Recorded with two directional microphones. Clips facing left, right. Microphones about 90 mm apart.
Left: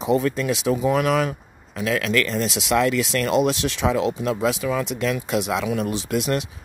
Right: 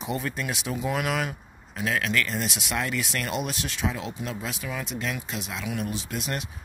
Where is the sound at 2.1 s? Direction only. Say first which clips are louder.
Left 6 dB; 90° left.